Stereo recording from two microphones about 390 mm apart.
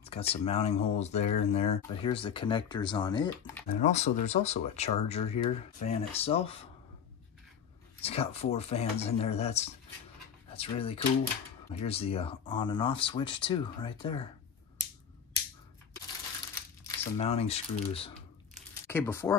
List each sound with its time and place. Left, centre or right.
0.0 s speech: centre
8.0 s speech: centre
16.8 s speech: centre